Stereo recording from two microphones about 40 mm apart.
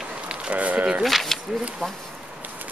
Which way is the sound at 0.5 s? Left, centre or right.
Right.